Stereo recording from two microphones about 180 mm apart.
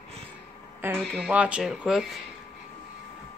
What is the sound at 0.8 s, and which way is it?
A woman's voice, 10° right (ahead or behind).